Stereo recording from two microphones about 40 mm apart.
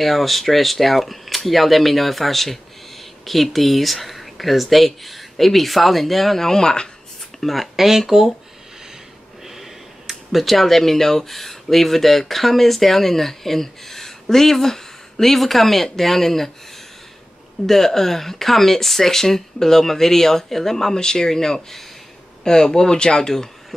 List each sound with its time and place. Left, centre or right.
0.0 s speech: centre
7.3 s speech: centre
9.6 s speech: centre
17.6 s speech: centre